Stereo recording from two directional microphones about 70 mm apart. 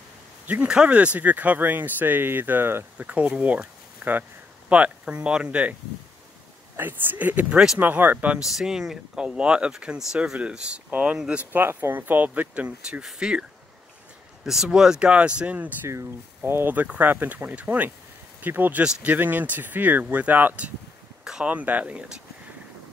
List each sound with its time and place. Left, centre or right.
0.5 s speech: centre; by 2.8 s right
3.0 s speech: centre
6.8 s speech: right
8.5 s speech: centre
11.5 s speech: right
15.9 s speech: right
21.2 s a sound: centre
21.5 s speech: right